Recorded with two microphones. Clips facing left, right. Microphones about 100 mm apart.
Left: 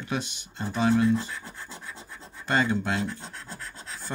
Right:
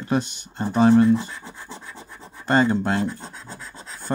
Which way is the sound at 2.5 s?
40° right (ahead or behind).